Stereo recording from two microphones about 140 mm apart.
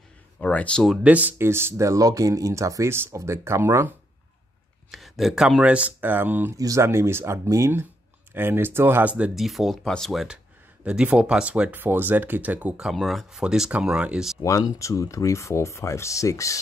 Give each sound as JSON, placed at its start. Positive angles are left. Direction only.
{"t": 0.4, "sound": "speech", "side_deg": 10}
{"t": 1.0, "sound": "speech", "side_deg": -10}
{"t": 4.9, "sound": "speech", "side_deg": 0}
{"t": 6.5, "sound": "speech", "side_deg": -25}
{"t": 14.4, "sound": "speech", "side_deg": 25}